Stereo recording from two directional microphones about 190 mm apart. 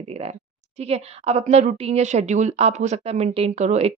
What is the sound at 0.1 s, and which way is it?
A woman's voice, 35° right (ahead or behind).